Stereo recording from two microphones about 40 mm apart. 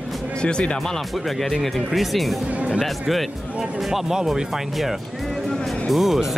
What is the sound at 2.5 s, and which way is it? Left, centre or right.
Speech, right.